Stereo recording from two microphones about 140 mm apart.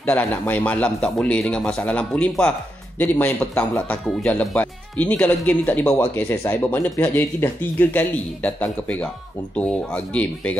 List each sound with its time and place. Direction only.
0.0 s speech: 10° left (ahead or behind)